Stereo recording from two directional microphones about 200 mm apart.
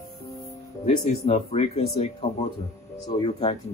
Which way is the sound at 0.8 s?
30° left (ahead or behind).